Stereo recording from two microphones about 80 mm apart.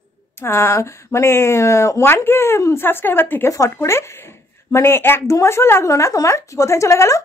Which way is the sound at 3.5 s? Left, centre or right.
Left.